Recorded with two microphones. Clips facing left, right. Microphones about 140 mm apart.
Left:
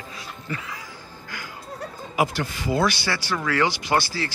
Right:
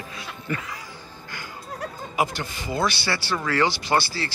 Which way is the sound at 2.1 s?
5° left (ahead or behind).